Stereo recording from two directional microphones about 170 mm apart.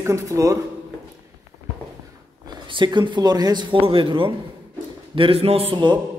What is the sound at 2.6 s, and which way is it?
A man's voice, 30° right (ahead or behind).